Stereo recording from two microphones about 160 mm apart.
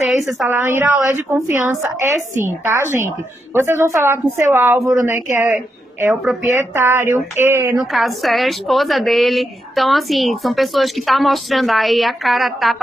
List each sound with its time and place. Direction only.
0.0 s a sound: centre (ahead or behind)
0.5 s a woman's voice: 15° right (ahead or behind)
7.7 s a woman's voice: centre (ahead or behind)